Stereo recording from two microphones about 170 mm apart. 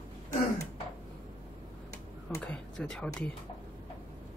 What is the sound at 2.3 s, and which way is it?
Speech, 10° left (ahead or behind).